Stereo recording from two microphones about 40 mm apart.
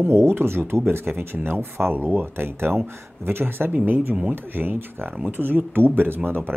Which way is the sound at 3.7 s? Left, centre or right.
Right.